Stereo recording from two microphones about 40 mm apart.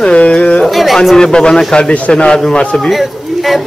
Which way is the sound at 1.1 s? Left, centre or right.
Left.